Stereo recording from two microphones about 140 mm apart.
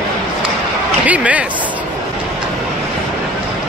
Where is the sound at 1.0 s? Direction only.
10° right (ahead or behind).